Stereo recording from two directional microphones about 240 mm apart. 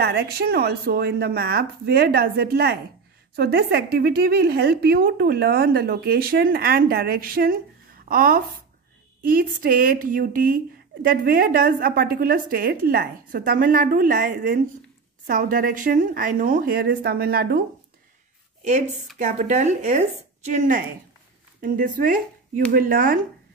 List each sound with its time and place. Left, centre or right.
0.0 s speech: right
19.1 s a woman's voice: right